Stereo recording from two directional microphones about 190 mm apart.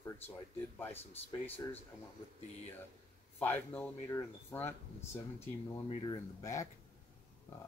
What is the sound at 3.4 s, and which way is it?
Speech, 10° left (ahead or behind).